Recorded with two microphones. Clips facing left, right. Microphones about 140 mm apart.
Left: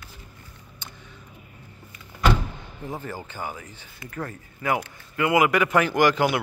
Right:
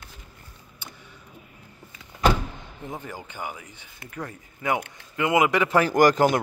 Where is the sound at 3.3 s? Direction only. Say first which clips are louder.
Left 1 dB; 15° right (ahead or behind).